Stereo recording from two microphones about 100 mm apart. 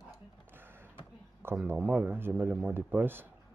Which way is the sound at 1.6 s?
15° right (ahead or behind).